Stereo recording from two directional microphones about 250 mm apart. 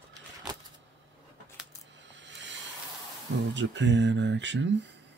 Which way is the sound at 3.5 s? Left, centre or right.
Right.